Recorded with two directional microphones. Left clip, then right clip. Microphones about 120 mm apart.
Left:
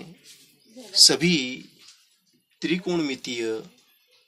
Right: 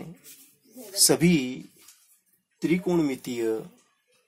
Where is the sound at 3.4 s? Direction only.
30° right (ahead or behind).